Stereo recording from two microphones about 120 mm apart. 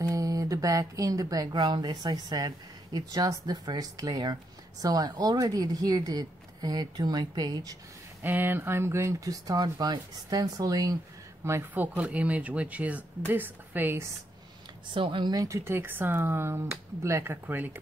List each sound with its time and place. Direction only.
0.0 s speech: 30° right (ahead or behind)
8.2 s speech: 15° right (ahead or behind); by 11.0 s 30° right (ahead or behind)
11.4 s speech: 20° right (ahead or behind)
15.0 s speech: 40° right (ahead or behind)
15.4 s speech: 25° right (ahead or behind)